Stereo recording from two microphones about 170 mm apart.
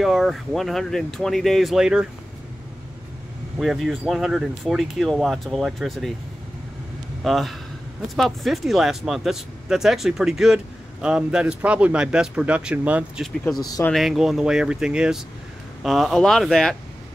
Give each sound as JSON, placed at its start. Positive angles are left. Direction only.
{"t": 0.0, "sound": "speech", "side_deg": 0}
{"t": 3.5, "sound": "speech", "side_deg": 0}
{"t": 7.2, "sound": "speech", "side_deg": 0}
{"t": 13.4, "sound": "speech", "side_deg": 20}
{"t": 13.8, "sound": "speech", "side_deg": 0}